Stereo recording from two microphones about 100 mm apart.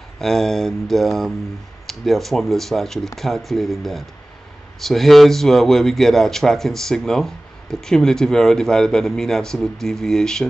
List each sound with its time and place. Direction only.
0.2 s a man's voice: 5° left (ahead or behind)